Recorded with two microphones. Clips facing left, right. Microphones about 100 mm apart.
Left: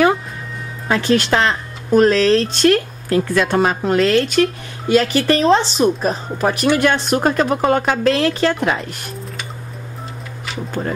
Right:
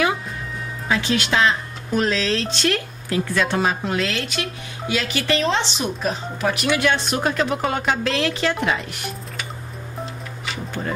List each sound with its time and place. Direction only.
0.8 s speech: 45° left (ahead or behind)